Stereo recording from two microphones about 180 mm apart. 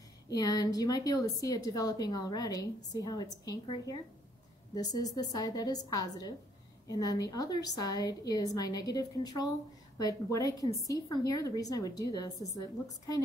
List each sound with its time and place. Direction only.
0.3 s a woman's voice: 20° left (ahead or behind)